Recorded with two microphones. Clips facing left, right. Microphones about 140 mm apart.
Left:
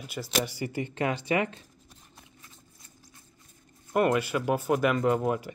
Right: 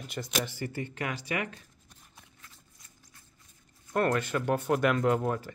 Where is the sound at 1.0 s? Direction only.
25° left (ahead or behind).